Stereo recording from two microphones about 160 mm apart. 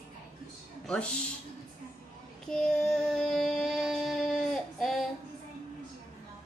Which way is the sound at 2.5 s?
5° left (ahead or behind).